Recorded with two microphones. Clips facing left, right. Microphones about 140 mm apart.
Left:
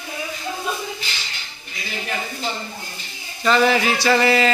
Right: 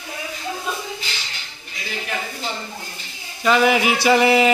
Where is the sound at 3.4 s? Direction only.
10° right (ahead or behind).